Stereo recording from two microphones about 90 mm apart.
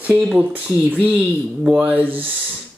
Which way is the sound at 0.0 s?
15° right (ahead or behind).